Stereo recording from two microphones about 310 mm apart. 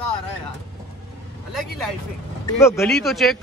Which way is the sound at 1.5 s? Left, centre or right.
Centre.